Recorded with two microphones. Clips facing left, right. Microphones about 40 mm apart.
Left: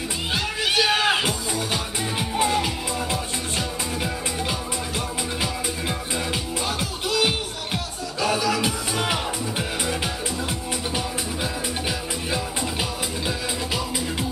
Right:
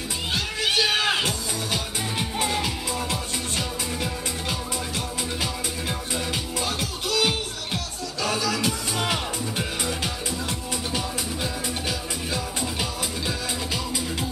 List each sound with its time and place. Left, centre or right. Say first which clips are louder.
0.3 s music: left 1 dB; centre